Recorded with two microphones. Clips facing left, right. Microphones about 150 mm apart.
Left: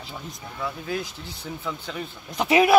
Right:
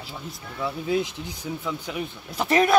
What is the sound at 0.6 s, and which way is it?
Speech, 25° right (ahead or behind).